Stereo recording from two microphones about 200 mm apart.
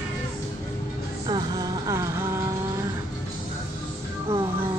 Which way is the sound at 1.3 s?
20° right (ahead or behind).